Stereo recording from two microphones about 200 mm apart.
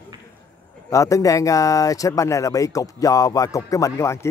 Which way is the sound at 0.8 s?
15° left (ahead or behind).